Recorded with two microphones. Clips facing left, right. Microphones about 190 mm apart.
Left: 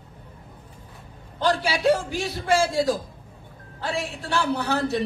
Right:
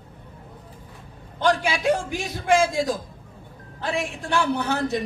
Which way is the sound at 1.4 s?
15° right (ahead or behind).